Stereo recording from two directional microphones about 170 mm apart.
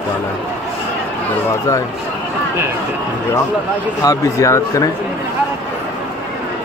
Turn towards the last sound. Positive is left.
turn(degrees=15)  # may be behind; listen again after turning